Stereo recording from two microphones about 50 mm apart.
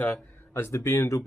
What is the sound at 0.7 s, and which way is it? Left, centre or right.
Speech, left.